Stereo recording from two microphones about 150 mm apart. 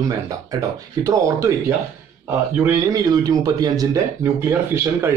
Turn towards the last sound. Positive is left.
turn(degrees=-15)  # may be behind; listen again after turning